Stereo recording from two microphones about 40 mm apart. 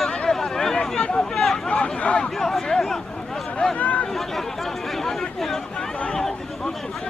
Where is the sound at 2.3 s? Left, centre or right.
Centre.